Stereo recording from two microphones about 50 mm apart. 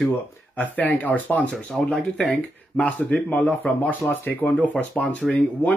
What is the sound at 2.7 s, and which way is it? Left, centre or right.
Speech, left.